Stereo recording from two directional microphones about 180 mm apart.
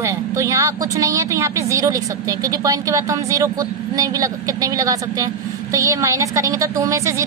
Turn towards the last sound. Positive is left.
turn(degrees=-15)  # may be behind; listen again after turning